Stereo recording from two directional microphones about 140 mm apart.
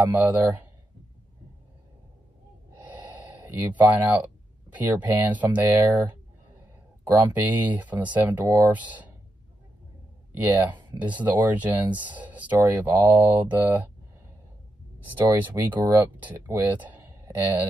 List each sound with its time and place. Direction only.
0.1 s speech: 10° right (ahead or behind)
2.9 s a sound: 10° right (ahead or behind)
4.7 s speech: 10° right (ahead or behind)
7.1 s speech: 15° right (ahead or behind)
10.3 s speech: 15° right (ahead or behind)
15.1 s speech: 15° right (ahead or behind)